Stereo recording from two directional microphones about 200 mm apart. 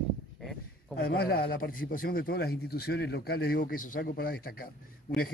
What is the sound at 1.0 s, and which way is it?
A man's voice, 50° left (ahead or behind).